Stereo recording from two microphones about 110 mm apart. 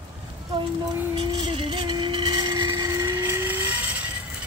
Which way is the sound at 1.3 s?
50° right (ahead or behind).